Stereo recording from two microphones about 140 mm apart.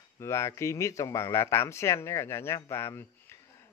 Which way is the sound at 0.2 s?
20° left (ahead or behind).